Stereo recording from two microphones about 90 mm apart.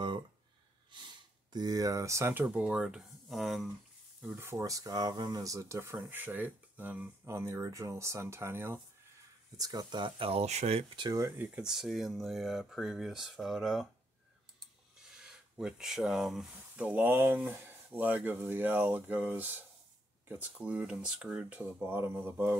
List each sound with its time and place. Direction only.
0.9 s speech: 55° right (ahead or behind); by 2.3 s 35° right (ahead or behind)
2.4 s speech: 15° right (ahead or behind)
4.4 s speech: 35° right (ahead or behind)
6.0 s speech: 20° right (ahead or behind)
7.2 s speech: 35° right (ahead or behind)
9.6 s speech: 50° right (ahead or behind); by 10.4 s 90° right
11.3 s speech: 10° right (ahead or behind)
15.1 s speech: 5° right (ahead or behind)
16.5 s speech: 15° right (ahead or behind)